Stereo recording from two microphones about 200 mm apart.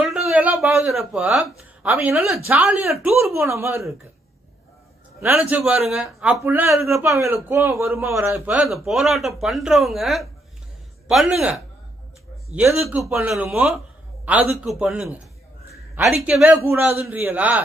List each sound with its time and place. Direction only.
0.0 s a sound: 5° right (ahead or behind)
1.8 s a man's voice: 5° right (ahead or behind)
5.2 s a man's voice: 5° right (ahead or behind)